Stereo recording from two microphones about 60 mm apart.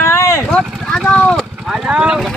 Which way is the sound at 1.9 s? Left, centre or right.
Centre.